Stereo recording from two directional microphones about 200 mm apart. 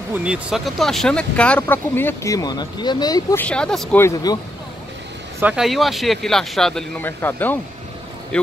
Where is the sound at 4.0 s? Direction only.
20° left (ahead or behind).